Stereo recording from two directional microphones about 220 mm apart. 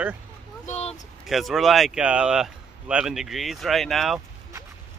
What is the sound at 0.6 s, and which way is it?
Speech, 30° left (ahead or behind).